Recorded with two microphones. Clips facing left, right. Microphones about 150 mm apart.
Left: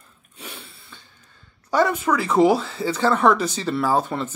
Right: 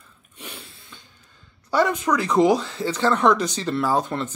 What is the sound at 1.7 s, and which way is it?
A woman's voice, 10° left (ahead or behind).